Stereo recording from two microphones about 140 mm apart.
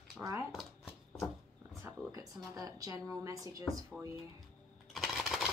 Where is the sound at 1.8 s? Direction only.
25° right (ahead or behind).